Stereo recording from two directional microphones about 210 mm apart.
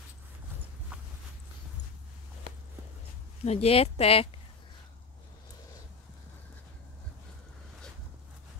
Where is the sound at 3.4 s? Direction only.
30° left (ahead or behind).